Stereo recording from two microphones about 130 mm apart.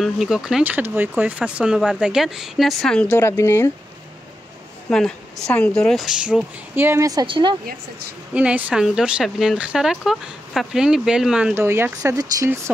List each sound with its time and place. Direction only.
0.0 s speech: 5° right (ahead or behind)
3.1 s speech: 20° left (ahead or behind)
4.8 s speech: 5° left (ahead or behind); by 7.2 s 25° right (ahead or behind)
7.2 s speech: 40° right (ahead or behind)
8.4 s speech: 10° right (ahead or behind)
11.5 s speech: 20° right (ahead or behind)